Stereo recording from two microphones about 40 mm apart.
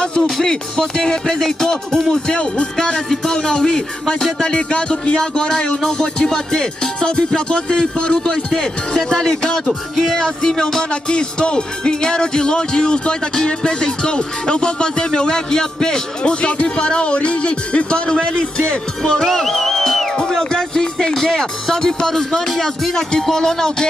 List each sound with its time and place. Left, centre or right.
0.0 s music: centre
5.8 s speech: centre
9.2 s music: centre
9.9 s music: centre
10.2 s music: centre
19.2 s music: centre
20.2 s speech: centre